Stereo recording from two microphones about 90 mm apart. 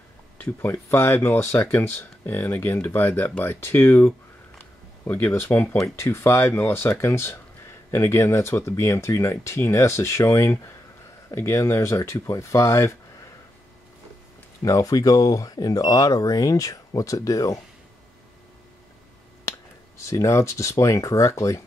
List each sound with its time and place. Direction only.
0.4 s speech: 25° left (ahead or behind)
4.6 s a sound: 20° left (ahead or behind)
5.8 s speech: 30° left (ahead or behind)
14.6 s speech: 40° left (ahead or behind)
19.5 s finger snapping: 35° left (ahead or behind)
20.0 s speech: 35° left (ahead or behind)